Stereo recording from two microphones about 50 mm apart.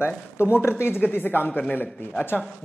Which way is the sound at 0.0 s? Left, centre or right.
Left.